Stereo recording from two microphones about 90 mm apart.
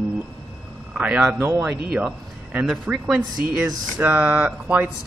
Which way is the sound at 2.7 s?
15° right (ahead or behind).